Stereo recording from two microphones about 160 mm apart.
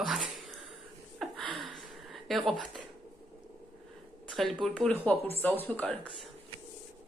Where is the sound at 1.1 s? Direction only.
Centre (ahead or behind).